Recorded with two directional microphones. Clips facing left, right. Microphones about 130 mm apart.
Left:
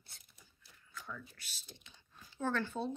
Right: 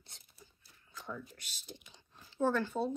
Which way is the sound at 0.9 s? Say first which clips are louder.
Right 4 dB; 25° right (ahead or behind).